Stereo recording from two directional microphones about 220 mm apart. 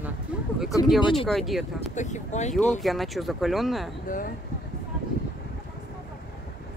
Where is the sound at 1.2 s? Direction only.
Centre (ahead or behind).